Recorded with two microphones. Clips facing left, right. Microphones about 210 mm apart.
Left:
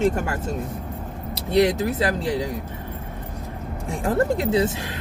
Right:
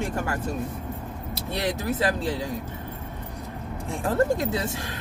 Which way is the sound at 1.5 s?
15° left (ahead or behind).